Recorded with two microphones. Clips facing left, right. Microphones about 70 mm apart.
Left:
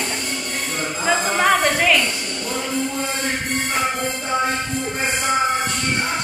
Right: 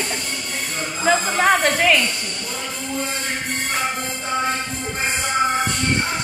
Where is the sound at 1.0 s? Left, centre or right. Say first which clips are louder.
Right 1 dB; centre.